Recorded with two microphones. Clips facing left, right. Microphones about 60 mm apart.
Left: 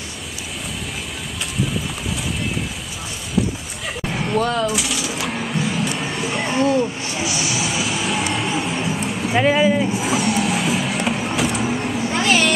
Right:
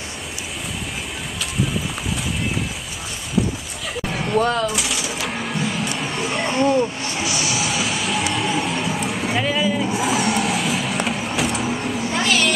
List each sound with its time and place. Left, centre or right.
4.3 s a sound: centre
5.9 s music: centre
6.5 s speech: centre
7.5 s vehicle: centre
9.4 s speech: left
9.9 s vehicle: centre
12.1 s vehicle: left